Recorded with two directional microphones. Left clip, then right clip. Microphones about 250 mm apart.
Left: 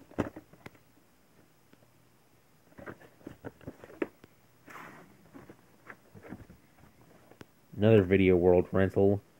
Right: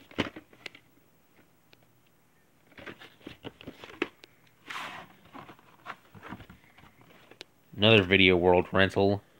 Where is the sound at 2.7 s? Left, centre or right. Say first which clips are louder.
Right 2 dB; centre.